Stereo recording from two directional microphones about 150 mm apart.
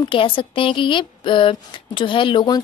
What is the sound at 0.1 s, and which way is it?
Speech, 35° left (ahead or behind).